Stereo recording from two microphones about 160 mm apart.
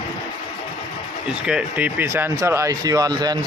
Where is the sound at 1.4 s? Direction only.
10° right (ahead or behind); by 3.4 s 25° right (ahead or behind).